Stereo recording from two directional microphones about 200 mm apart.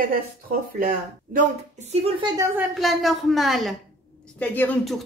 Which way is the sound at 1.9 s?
25° right (ahead or behind).